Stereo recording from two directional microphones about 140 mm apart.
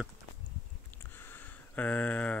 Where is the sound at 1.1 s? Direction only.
15° left (ahead or behind).